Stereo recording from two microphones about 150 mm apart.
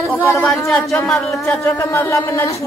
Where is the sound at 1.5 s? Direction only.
20° left (ahead or behind).